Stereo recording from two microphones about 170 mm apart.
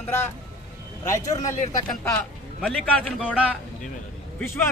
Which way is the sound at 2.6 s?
5° left (ahead or behind).